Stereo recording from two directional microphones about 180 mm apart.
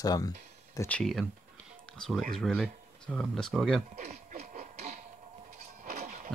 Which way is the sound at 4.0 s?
40° right (ahead or behind).